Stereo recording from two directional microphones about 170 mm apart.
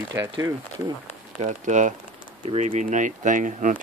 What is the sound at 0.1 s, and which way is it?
Speech, 20° right (ahead or behind).